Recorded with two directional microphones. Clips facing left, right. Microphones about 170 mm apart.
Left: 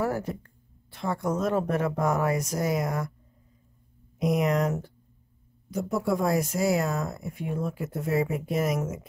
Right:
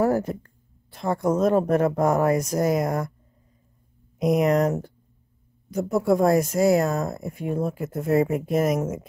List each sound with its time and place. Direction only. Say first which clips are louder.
0.0 s speech: right 7 dB; 45° right (ahead or behind)
4.2 s speech: right 5 dB; 45° right (ahead or behind)